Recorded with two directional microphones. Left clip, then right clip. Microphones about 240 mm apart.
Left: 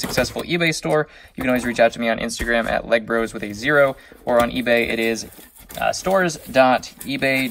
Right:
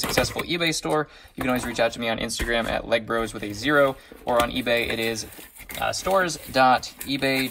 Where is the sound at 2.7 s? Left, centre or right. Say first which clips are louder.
Left 5 dB; right.